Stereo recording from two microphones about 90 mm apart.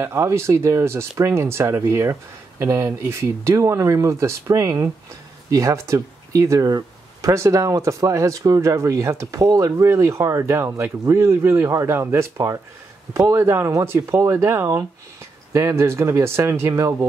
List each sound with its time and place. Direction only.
0.0 s speech: 30° right (ahead or behind)